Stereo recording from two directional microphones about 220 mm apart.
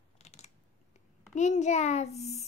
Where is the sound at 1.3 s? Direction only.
30° left (ahead or behind).